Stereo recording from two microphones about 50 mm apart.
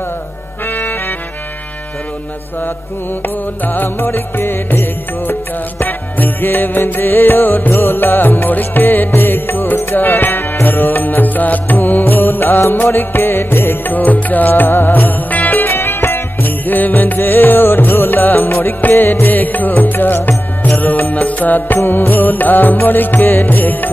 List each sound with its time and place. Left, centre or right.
3.6 s music: left
13.9 s music: left
14.5 s music: left
15.7 s music: left
16.6 s music: left